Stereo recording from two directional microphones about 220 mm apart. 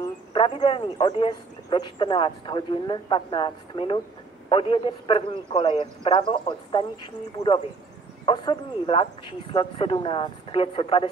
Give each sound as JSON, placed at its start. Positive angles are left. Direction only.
{"t": 0.0, "sound": "speech", "side_deg": 20}